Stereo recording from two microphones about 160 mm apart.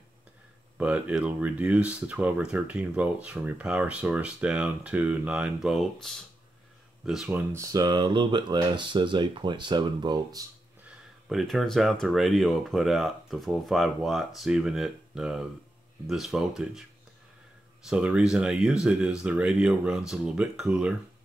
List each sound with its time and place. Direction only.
0.7 s speech: 10° right (ahead or behind)
7.5 s speech: 20° right (ahead or behind)
11.2 s speech: centre (ahead or behind)
17.8 s speech: 5° right (ahead or behind)